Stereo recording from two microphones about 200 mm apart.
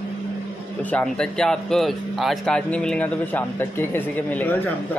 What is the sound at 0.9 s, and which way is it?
Speech, 5° left (ahead or behind).